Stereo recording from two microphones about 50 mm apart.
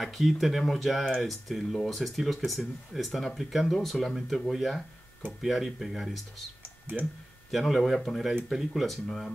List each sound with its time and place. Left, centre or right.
0.0 s speech: centre
6.6 s clicking: right
7.5 s speech: centre